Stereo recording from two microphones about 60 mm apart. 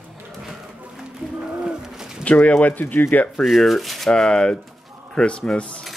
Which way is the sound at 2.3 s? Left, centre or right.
Left.